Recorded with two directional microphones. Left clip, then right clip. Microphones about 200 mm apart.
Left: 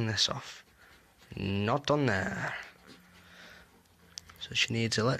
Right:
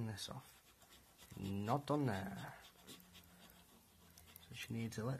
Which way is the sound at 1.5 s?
25° left (ahead or behind).